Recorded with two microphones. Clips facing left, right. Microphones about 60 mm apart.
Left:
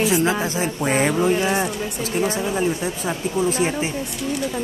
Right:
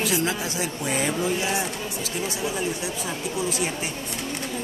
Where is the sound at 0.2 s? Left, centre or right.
Left.